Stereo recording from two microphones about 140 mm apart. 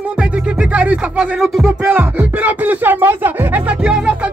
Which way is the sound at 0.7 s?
10° right (ahead or behind).